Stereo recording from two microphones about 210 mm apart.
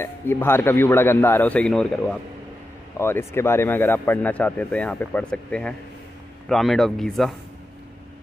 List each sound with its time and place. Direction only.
0.0 s speech: 10° left (ahead or behind)
3.0 s speech: 10° left (ahead or behind)